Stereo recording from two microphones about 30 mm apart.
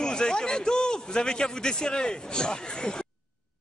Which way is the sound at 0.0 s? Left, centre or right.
Left.